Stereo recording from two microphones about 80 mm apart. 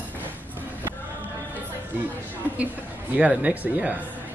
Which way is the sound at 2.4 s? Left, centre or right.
Right.